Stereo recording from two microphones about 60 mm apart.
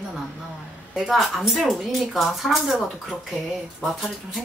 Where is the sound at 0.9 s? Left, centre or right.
Centre.